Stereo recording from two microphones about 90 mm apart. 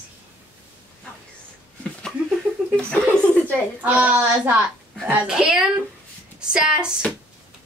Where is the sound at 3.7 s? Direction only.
15° right (ahead or behind).